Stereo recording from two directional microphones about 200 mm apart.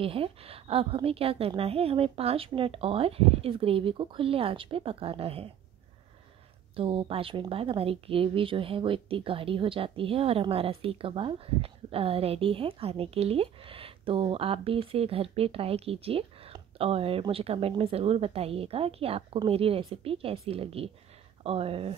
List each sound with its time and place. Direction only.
0.0 s speech: 30° right (ahead or behind)
6.7 s speech: 25° right (ahead or behind)